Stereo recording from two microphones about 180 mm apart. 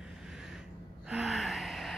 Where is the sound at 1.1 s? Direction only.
5° right (ahead or behind).